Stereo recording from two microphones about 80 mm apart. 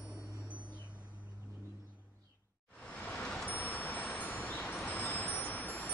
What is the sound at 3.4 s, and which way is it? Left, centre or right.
Vehicle, left.